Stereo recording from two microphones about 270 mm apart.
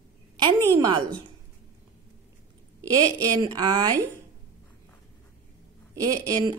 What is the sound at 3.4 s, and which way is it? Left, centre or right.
Speech, centre.